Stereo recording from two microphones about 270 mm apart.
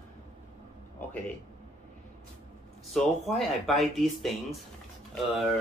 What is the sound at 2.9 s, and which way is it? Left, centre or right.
Speech, centre.